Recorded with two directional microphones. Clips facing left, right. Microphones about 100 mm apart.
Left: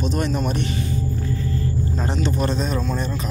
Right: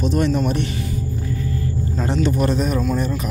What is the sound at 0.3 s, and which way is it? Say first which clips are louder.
Speech: right 4 dB; 25° left (ahead or behind).